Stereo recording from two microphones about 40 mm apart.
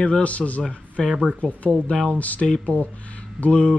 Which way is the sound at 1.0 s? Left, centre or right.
Centre.